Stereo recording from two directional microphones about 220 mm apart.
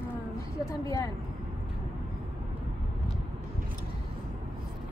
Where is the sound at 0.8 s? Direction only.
15° left (ahead or behind).